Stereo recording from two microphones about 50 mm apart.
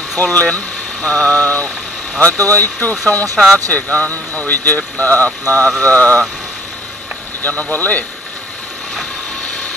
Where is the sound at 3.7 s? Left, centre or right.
Left.